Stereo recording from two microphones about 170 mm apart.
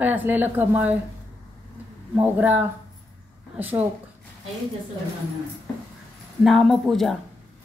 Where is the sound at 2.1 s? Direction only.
10° right (ahead or behind).